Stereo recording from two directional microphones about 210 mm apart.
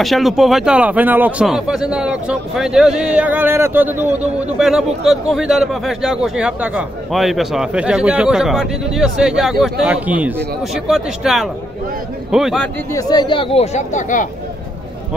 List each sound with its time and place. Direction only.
0.0 s a man's voice: centre (ahead or behind)
12.9 s speech: 20° left (ahead or behind); by 14.2 s 35° left (ahead or behind)